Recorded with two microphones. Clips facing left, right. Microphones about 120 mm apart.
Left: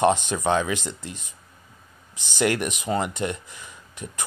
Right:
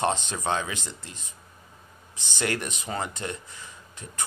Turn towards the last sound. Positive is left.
turn(degrees=15)  # may be behind; listen again after turning